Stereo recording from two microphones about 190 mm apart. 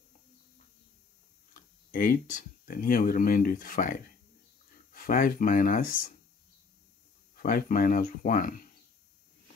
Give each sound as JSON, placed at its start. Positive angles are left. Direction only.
{"t": 1.5, "sound": "speech", "side_deg": 45}
{"t": 7.3, "sound": "speech", "side_deg": 50}